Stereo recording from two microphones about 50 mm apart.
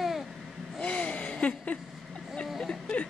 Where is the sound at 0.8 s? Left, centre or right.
Left.